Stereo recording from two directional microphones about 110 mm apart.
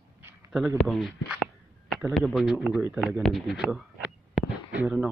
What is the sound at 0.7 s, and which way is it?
Speech, centre (ahead or behind).